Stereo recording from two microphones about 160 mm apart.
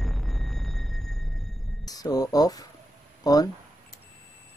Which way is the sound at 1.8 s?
25° left (ahead or behind).